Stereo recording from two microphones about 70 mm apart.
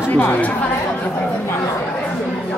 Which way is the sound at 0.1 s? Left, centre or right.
Left.